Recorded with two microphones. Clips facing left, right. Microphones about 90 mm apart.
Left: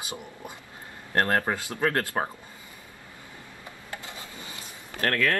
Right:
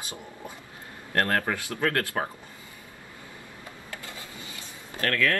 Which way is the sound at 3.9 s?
20° left (ahead or behind).